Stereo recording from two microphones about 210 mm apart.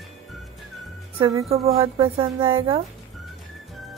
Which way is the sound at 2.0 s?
25° right (ahead or behind).